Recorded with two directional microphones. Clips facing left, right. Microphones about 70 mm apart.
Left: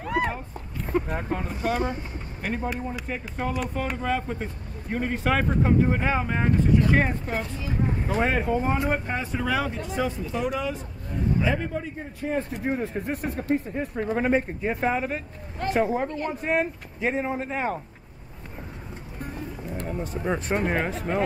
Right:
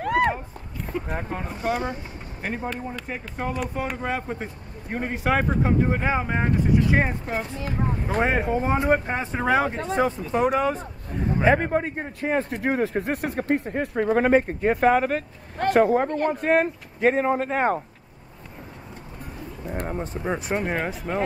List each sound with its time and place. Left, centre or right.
0.0 s a sound: right
1.0 s speech: centre
4.0 s speech: centre; by 17.7 s right
19.7 s bird: right
20.2 s speech: centre